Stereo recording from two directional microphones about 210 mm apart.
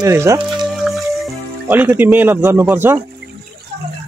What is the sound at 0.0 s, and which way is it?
Speech, 15° right (ahead or behind).